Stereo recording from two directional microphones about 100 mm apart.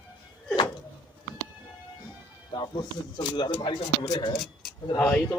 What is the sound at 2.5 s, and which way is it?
Music, 50° left (ahead or behind).